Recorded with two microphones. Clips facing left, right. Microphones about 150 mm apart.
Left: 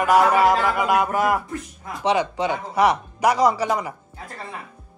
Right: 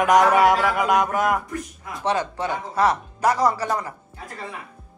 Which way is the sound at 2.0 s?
15° left (ahead or behind).